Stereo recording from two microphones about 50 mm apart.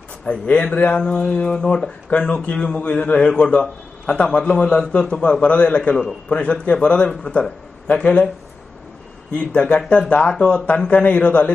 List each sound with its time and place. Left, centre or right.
0.2 s a man's voice: left
2.8 s a man's voice: left
9.4 s a man's voice: left